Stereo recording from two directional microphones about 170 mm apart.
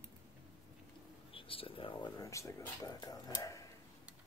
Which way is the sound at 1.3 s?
30° left (ahead or behind).